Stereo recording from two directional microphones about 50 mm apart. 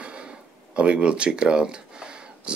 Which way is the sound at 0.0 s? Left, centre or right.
Right.